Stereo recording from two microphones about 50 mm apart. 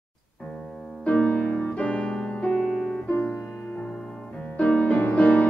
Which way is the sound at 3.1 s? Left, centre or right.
Left.